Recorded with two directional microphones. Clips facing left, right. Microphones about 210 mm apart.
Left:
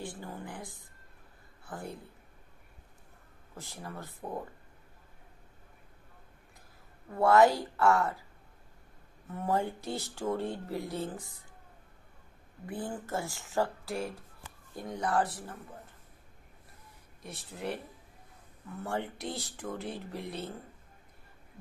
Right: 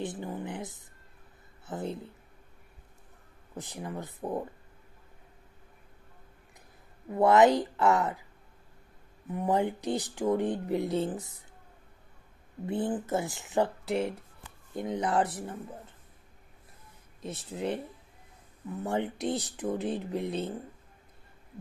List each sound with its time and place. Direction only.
0.0 s a woman's voice: 20° right (ahead or behind)
3.5 s speech: 20° right (ahead or behind)
7.1 s speech: 20° right (ahead or behind)
9.3 s speech: 15° right (ahead or behind)
12.6 s speech: 25° right (ahead or behind)
17.2 s speech: 20° right (ahead or behind)